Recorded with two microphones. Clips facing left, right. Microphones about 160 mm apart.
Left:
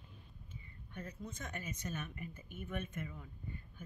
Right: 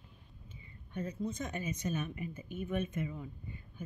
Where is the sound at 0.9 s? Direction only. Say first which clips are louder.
Right 9 dB; 20° right (ahead or behind).